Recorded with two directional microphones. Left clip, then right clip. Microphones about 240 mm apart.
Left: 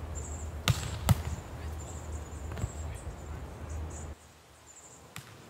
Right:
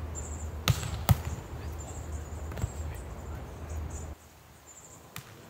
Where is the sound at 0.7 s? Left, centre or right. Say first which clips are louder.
Right 1 dB; centre.